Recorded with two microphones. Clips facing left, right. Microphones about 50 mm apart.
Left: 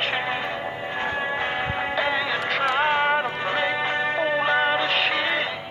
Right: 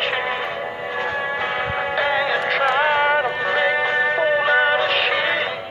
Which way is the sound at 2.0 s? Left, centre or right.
Centre.